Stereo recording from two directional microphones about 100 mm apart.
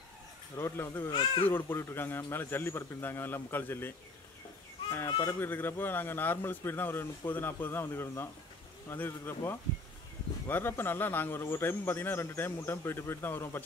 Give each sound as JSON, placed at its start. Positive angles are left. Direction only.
{"t": 0.6, "sound": "speech", "side_deg": 25}
{"t": 5.2, "sound": "speech", "side_deg": 20}